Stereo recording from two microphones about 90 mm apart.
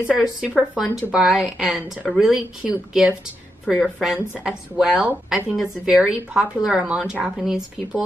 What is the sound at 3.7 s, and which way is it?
Speech, 10° right (ahead or behind).